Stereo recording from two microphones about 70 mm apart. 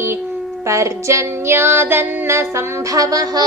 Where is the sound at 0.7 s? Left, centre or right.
Right.